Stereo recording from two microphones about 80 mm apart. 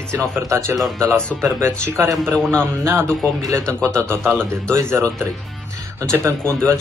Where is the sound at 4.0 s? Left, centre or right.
Right.